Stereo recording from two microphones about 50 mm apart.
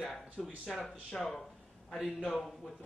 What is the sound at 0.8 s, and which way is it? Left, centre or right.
Speech, centre.